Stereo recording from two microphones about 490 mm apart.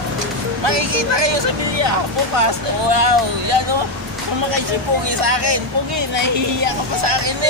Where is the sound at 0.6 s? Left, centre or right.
Right.